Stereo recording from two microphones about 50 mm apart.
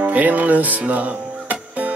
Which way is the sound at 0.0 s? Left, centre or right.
Right.